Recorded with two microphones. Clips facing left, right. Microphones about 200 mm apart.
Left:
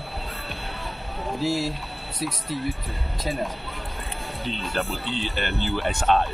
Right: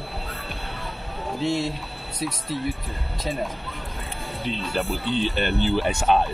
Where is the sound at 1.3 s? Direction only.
Centre (ahead or behind).